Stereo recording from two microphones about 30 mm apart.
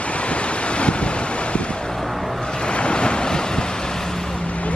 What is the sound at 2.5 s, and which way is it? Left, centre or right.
Waves, left.